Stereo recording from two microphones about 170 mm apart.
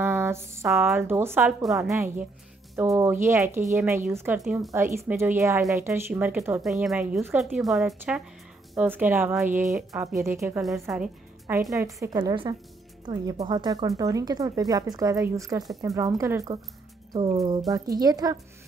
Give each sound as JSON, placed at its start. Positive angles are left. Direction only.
{"t": 0.0, "sound": "a sound", "side_deg": -15}
{"t": 0.9, "sound": "a woman's voice", "side_deg": -15}
{"t": 4.4, "sound": "speech", "side_deg": 0}
{"t": 4.7, "sound": "a woman's voice", "side_deg": -15}
{"t": 10.6, "sound": "a woman's voice", "side_deg": 0}
{"t": 17.6, "sound": "speech", "side_deg": -20}